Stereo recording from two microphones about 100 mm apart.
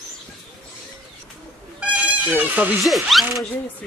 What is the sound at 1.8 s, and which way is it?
Music, 10° right (ahead or behind).